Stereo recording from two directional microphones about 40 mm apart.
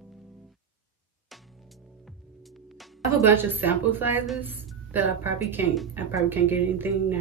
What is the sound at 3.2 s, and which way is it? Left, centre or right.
A woman's voice, right.